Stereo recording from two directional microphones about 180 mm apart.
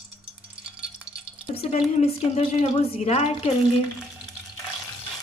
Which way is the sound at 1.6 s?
35° left (ahead or behind).